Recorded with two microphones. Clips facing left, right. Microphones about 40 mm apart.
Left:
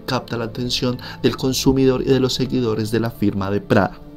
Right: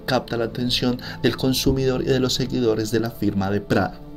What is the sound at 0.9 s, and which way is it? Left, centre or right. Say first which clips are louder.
Speech: left 2 dB; centre.